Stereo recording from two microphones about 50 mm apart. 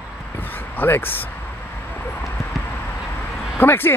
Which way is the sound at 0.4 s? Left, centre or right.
Left.